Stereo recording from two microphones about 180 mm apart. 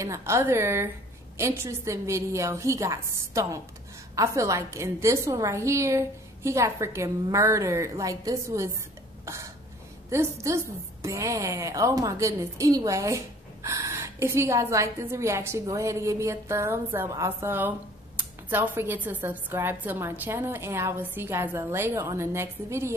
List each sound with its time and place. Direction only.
0.0 s a woman's voice: 15° right (ahead or behind)
9.2 s throat clearing: 15° right (ahead or behind)
10.0 s a woman's voice: 15° right (ahead or behind)